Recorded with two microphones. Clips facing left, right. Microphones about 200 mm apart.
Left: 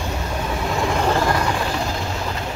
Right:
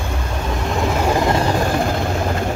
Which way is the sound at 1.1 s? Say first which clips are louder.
Right 3 dB; 20° right (ahead or behind).